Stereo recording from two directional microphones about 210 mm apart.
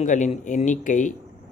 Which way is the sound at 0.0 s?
35° left (ahead or behind).